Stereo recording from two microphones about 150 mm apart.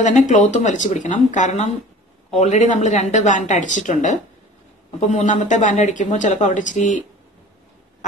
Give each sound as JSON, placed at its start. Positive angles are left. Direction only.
{"t": 0.0, "sound": "a woman's voice", "side_deg": 50}